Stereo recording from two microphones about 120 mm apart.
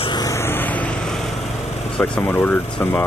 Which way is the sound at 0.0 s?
35° left (ahead or behind).